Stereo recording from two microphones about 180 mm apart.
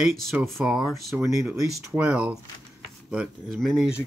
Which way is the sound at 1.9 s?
5° right (ahead or behind).